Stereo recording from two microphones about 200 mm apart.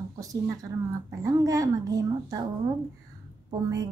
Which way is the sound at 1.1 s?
15° right (ahead or behind).